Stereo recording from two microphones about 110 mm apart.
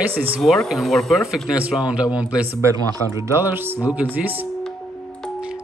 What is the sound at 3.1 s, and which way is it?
Speech, 20° right (ahead or behind).